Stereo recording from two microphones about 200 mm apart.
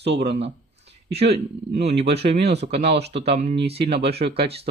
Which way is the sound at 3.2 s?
30° right (ahead or behind).